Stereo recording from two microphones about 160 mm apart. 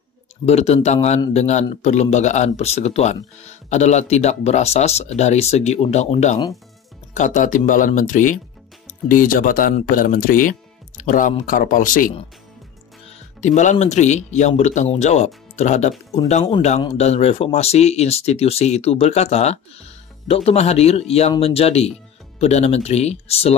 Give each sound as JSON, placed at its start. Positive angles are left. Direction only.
{"t": 0.5, "sound": "speech", "side_deg": 40}
{"t": 13.4, "sound": "speech", "side_deg": 50}